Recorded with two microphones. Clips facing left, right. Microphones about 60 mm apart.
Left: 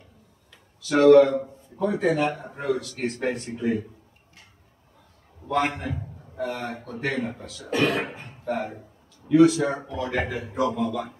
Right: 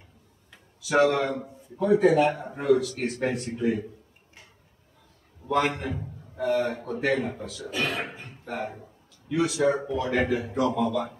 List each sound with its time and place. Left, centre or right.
0.7 s a man's voice: centre
5.8 s a man's voice: centre
7.7 s speech: left
8.5 s a man's voice: centre